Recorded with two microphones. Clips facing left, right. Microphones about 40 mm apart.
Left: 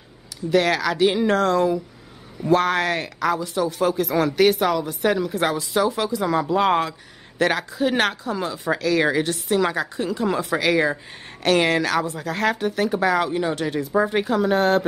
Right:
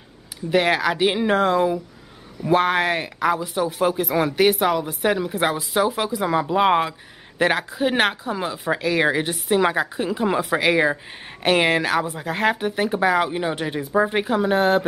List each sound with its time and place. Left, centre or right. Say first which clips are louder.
0.5 s speech: even; centre